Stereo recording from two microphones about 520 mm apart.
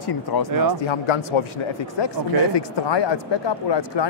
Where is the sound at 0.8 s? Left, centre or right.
Left.